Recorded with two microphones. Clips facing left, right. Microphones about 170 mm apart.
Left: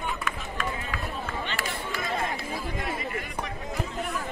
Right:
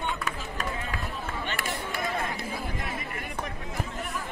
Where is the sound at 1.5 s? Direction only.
50° right (ahead or behind).